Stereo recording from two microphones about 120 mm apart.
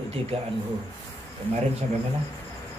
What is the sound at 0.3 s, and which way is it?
Speech, 55° right (ahead or behind).